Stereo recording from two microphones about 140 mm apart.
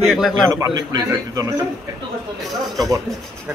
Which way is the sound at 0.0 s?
Centre (ahead or behind).